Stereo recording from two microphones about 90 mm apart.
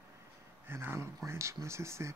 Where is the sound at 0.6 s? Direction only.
25° right (ahead or behind).